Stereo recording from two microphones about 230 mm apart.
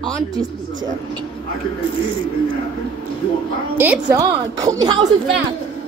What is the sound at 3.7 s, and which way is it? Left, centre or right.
A woman's voice, centre.